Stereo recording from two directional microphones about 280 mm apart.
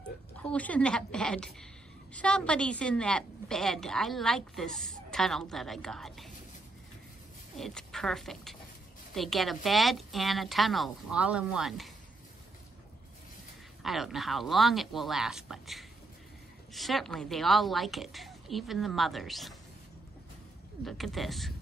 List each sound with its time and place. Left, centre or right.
0.4 s a woman's voice: centre
7.5 s a woman's voice: centre
13.8 s a woman's voice: centre
20.8 s a woman's voice: centre